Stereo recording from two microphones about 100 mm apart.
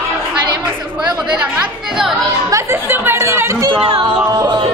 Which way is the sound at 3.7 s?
65° right (ahead or behind).